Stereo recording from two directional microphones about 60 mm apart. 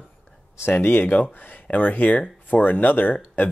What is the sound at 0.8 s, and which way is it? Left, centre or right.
Speech, left.